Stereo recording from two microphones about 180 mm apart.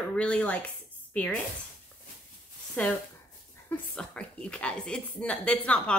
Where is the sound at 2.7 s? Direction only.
5° left (ahead or behind).